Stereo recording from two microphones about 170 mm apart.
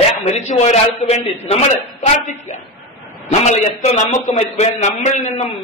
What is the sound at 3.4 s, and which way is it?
A man's voice, 45° left (ahead or behind).